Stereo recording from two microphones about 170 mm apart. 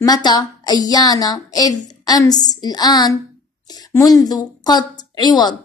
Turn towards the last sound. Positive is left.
turn(degrees=25)  # may be behind; listen again after turning